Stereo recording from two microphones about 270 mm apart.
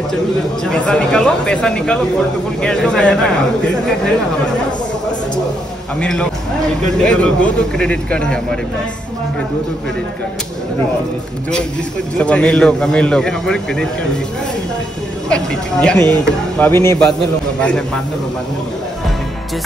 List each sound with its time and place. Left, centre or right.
0.7 s speech: centre
5.9 s speech: centre
12.2 s speech: centre
15.2 s speech: centre